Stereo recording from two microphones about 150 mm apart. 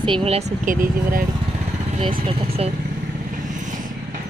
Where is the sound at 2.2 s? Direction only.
40° right (ahead or behind).